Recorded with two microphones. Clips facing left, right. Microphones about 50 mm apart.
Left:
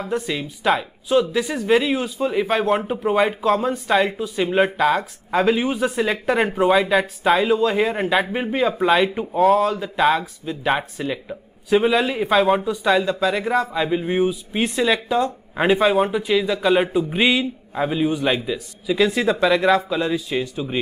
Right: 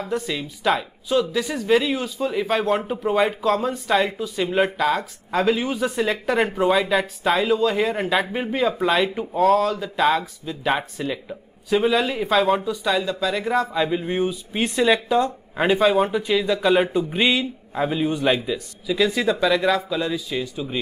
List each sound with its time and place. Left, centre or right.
0.1 s speech: centre
12.7 s speech: left
13.5 s speech: centre
18.9 s speech: left